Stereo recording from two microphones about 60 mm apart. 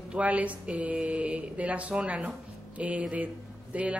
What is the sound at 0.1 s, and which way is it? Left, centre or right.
Speech, right.